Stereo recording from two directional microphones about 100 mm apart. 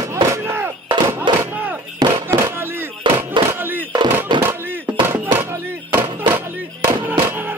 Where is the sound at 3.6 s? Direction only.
20° right (ahead or behind).